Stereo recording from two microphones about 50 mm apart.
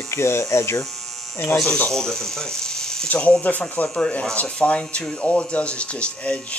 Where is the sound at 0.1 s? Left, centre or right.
Left.